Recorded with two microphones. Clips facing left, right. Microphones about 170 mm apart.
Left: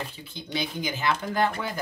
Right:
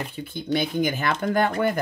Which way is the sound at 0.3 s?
55° right (ahead or behind).